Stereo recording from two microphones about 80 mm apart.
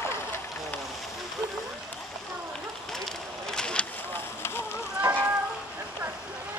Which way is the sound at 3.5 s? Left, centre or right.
Centre.